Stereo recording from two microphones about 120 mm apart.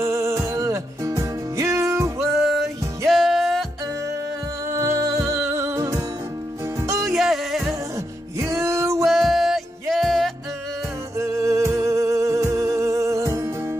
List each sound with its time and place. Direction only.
0.0 s music: 25° right (ahead or behind)
2.1 s music: centre (ahead or behind)
4.6 s music: 25° right (ahead or behind)
7.1 s music: centre (ahead or behind)
8.4 s music: 25° right (ahead or behind)
9.0 s music: centre (ahead or behind)
11.1 s music: 25° right (ahead or behind)